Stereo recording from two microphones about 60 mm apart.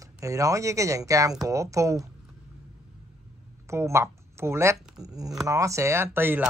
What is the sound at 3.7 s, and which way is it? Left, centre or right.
Speech, right.